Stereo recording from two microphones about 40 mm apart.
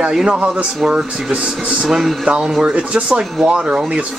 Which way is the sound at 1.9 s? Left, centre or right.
Centre.